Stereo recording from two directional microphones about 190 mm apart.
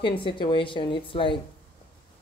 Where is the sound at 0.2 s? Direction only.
25° left (ahead or behind).